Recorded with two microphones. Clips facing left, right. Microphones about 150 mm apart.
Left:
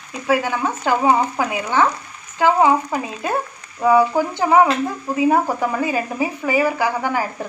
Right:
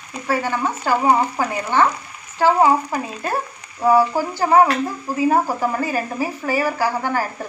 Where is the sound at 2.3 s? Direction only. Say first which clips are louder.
Even; 15° left (ahead or behind).